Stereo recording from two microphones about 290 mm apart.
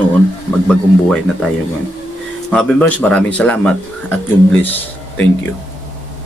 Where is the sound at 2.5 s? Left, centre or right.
Centre.